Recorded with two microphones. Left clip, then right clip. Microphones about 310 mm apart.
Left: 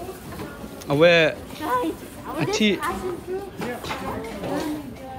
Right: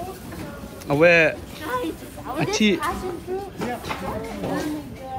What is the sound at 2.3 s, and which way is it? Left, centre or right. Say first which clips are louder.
Speech: right 1 dB; centre.